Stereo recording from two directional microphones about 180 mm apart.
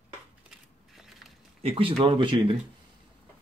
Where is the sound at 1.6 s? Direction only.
30° right (ahead or behind).